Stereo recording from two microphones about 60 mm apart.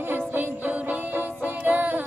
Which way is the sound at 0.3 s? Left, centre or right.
Right.